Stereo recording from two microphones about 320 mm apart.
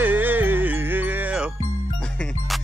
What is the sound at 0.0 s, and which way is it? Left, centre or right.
Music, centre.